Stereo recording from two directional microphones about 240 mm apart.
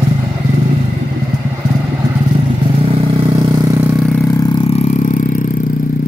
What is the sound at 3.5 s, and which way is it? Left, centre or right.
Vehicle, centre.